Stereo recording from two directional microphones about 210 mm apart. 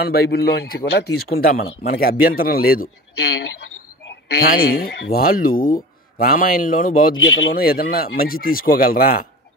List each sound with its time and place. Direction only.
0.0 s speech: 50° left (ahead or behind)
4.1 s speech: 45° left (ahead or behind)